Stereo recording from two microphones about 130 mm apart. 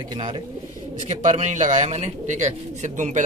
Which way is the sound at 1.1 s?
70° right (ahead or behind).